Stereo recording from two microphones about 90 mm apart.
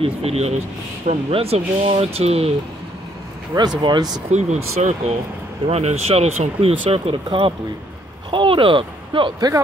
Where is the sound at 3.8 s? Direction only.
55° right (ahead or behind).